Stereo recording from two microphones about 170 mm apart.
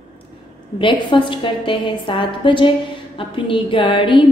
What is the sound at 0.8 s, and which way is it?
A woman's voice, 30° left (ahead or behind).